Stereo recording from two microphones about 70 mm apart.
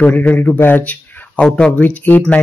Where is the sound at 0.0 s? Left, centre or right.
Centre.